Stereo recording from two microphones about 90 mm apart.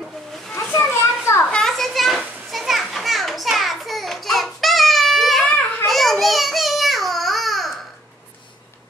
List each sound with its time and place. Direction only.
0.5 s children playing: 25° left (ahead or behind)
1.4 s children playing: 10° left (ahead or behind)
5.9 s a sound: centre (ahead or behind)